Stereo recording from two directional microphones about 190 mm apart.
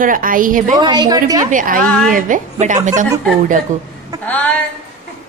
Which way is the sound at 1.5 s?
45° right (ahead or behind).